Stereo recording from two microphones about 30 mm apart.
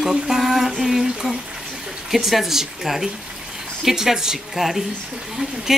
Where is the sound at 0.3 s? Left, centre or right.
Centre.